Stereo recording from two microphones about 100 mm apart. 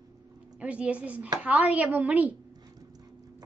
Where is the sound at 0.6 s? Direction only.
15° right (ahead or behind).